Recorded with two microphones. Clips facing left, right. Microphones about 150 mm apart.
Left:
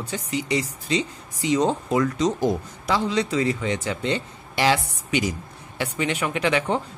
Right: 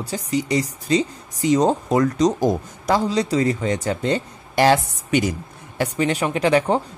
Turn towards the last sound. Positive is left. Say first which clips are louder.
# right 5 dB
turn(degrees=-35)  # may be behind; listen again after turning